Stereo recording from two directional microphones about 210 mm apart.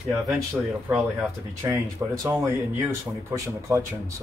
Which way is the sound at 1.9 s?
15° right (ahead or behind).